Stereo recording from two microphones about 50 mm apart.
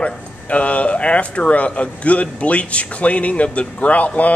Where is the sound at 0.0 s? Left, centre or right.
Left.